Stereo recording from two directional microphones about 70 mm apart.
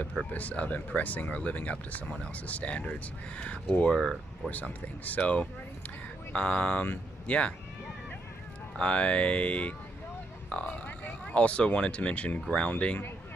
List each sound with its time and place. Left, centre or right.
0.3 s speech: left
3.9 s speech: centre
4.5 s speech: left
8.7 s speech: centre